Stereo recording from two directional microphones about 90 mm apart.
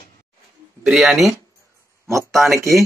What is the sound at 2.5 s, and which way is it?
Speech, 35° right (ahead or behind).